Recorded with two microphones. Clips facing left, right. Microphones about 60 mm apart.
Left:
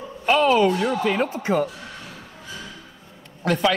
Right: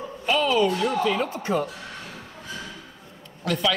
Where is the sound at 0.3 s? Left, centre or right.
Left.